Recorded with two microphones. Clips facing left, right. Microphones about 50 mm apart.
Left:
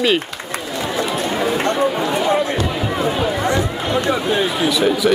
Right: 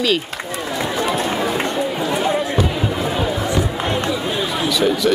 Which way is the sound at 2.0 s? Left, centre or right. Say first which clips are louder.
Left 2 dB; left.